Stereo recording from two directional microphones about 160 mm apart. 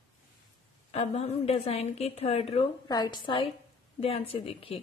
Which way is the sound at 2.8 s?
25° left (ahead or behind).